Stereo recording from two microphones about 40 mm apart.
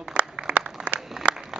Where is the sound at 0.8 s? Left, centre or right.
Right.